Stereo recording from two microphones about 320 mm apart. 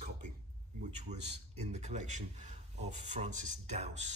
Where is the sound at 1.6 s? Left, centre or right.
Right.